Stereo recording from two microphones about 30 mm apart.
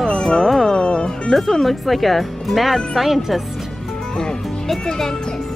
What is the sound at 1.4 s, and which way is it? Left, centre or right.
Speech, centre.